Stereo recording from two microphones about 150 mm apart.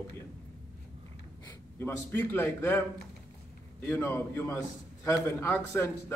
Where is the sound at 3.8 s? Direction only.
15° left (ahead or behind).